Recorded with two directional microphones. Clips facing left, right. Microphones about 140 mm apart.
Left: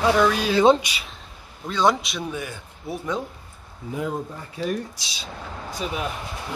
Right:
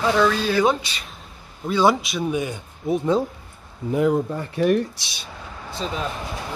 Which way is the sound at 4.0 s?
65° right (ahead or behind).